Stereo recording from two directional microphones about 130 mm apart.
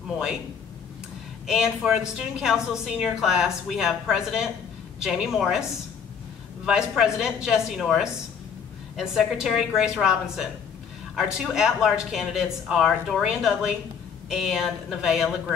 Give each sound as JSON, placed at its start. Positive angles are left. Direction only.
{"t": 1.5, "sound": "a woman's voice", "side_deg": -5}